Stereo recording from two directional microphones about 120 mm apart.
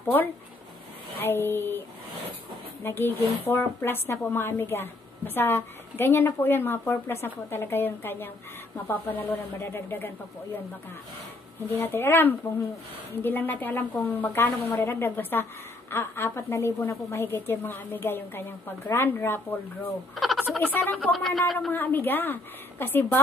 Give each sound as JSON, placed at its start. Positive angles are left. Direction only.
{"t": 0.0, "sound": "a woman's voice", "side_deg": 15}
{"t": 2.8, "sound": "a woman's voice", "side_deg": 20}
{"t": 11.7, "sound": "a woman's voice", "side_deg": 20}
{"t": 20.6, "sound": "a woman's voice", "side_deg": 15}
{"t": 21.1, "sound": "speech", "side_deg": 0}
{"t": 21.7, "sound": "a woman's voice", "side_deg": 15}